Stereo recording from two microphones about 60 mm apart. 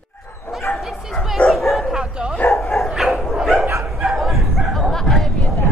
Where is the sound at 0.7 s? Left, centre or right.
Left.